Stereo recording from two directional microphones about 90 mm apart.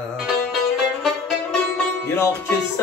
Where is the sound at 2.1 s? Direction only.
30° left (ahead or behind).